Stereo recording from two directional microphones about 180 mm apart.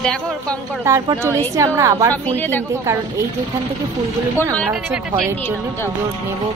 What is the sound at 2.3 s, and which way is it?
Speech, 10° left (ahead or behind).